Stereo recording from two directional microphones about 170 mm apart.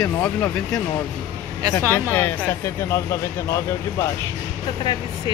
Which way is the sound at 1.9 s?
10° left (ahead or behind).